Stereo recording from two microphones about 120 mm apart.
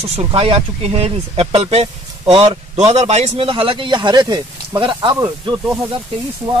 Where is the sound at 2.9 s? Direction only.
65° right (ahead or behind); by 5.2 s 35° right (ahead or behind).